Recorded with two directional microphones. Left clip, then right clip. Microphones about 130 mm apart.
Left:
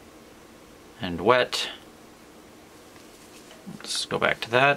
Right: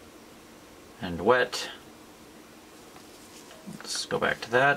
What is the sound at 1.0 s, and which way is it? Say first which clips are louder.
Speech: left 2 dB; 35° left (ahead or behind).